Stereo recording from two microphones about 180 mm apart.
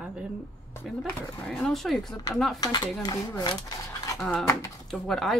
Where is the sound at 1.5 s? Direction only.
Centre (ahead or behind).